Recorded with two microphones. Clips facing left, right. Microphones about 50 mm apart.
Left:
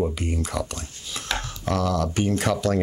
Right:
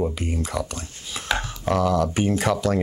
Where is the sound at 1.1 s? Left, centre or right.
Centre.